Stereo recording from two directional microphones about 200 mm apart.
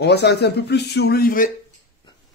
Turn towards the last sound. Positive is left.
turn(degrees=45)  # may be behind; listen again after turning